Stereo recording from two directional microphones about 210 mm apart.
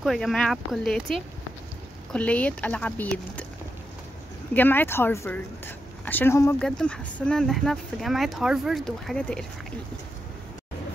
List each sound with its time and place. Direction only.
0.0 s a woman's voice: centre (ahead or behind)
4.6 s a woman's voice: 10° left (ahead or behind)